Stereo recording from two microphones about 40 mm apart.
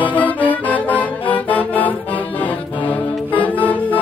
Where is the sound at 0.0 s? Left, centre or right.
Left.